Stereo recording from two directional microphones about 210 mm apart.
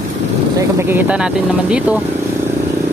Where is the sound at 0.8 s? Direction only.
10° right (ahead or behind).